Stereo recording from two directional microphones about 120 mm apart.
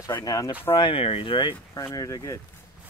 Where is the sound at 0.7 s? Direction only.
50° left (ahead or behind).